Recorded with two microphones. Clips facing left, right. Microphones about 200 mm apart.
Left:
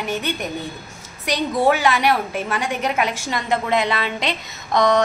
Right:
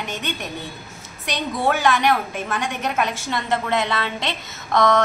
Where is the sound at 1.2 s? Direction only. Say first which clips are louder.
Left 4 dB; 10° left (ahead or behind).